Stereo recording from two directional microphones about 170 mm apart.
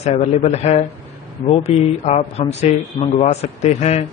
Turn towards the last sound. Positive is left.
turn(degrees=40)  # may be behind; listen again after turning